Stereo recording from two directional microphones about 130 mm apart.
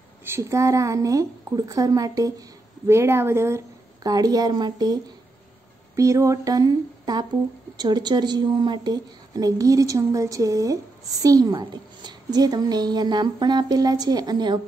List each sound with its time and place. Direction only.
0.2 s a woman's voice: 20° right (ahead or behind)
5.9 s a woman's voice: 25° right (ahead or behind)